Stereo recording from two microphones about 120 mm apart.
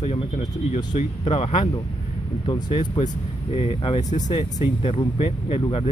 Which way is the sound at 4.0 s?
85° left.